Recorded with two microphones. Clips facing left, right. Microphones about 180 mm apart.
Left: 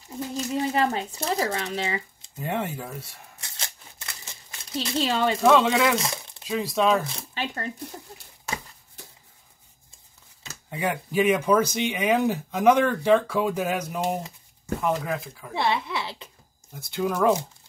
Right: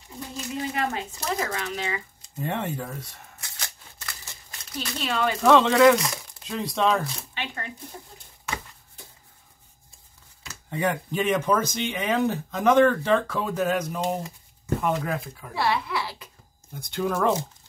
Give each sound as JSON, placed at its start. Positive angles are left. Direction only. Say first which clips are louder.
{"t": 0.6, "sound": "speech", "louder": "left 4 dB", "side_deg": 30}
{"t": 2.4, "sound": "speech", "louder": "even", "side_deg": 5}
{"t": 3.5, "sound": "shuffling cards", "louder": "left 1 dB", "side_deg": 25}
{"t": 4.7, "sound": "speech", "louder": "left 3 dB", "side_deg": 30}
{"t": 5.4, "sound": "speech", "louder": "right 4 dB", "side_deg": 5}
{"t": 5.9, "sound": "speech", "louder": "even", "side_deg": 25}
{"t": 6.4, "sound": "speech", "louder": "left 1 dB", "side_deg": 5}
{"t": 7.3, "sound": "speech", "louder": "left 5 dB", "side_deg": 35}
{"t": 10.7, "sound": "speech", "louder": "right 1 dB", "side_deg": 5}
{"t": 15.5, "sound": "speech", "louder": "even", "side_deg": 20}
{"t": 16.7, "sound": "speech", "louder": "even", "side_deg": 5}